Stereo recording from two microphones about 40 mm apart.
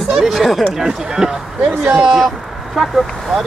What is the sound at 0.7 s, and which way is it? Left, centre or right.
Speech, centre.